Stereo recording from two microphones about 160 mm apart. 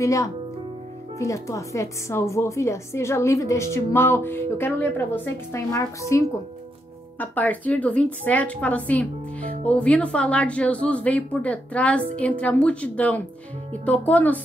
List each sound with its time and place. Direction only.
0.0 s a woman's voice: 20° left (ahead or behind)